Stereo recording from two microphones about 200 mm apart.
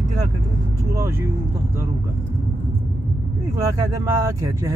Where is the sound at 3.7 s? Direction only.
15° right (ahead or behind).